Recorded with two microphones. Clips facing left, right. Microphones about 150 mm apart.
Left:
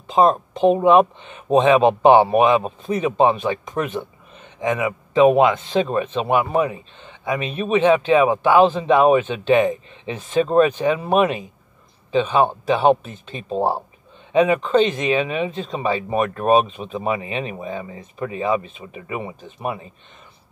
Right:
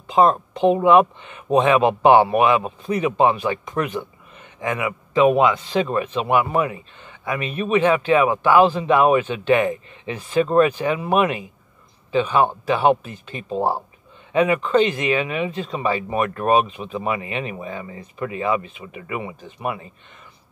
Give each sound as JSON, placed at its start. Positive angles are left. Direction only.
{"t": 0.1, "sound": "speech", "side_deg": 20}